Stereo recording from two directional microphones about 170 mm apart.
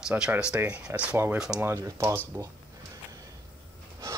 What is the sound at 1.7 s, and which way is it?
Speech, 15° right (ahead or behind).